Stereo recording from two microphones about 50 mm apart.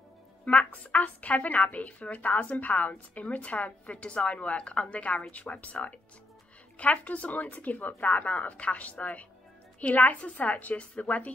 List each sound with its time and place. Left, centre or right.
0.7 s speech: left